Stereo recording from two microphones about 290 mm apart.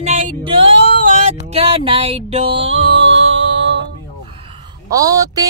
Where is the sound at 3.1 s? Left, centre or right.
Right.